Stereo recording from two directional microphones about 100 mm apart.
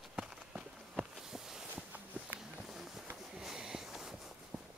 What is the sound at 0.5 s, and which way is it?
Walk, 10° right (ahead or behind).